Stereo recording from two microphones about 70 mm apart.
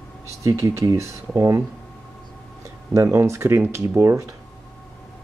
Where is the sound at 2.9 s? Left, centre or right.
Right.